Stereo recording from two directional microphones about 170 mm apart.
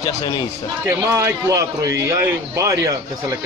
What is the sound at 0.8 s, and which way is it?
A man's voice, 15° right (ahead or behind).